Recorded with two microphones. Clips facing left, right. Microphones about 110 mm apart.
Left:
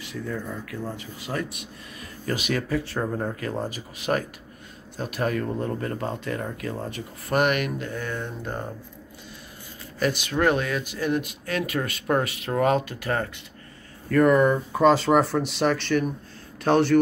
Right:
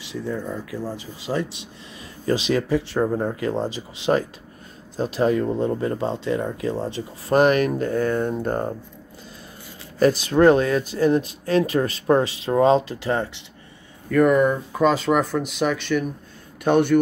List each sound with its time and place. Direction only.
0.5 s speech: 25° right (ahead or behind); by 8.6 s 45° right (ahead or behind)
9.9 s speech: 35° right (ahead or behind)
14.0 s speech: 5° right (ahead or behind)